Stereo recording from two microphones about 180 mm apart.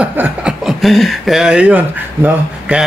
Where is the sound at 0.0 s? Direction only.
5° right (ahead or behind).